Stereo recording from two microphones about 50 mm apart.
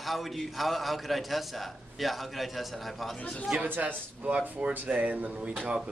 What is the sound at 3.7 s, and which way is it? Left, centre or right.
A man's voice, right.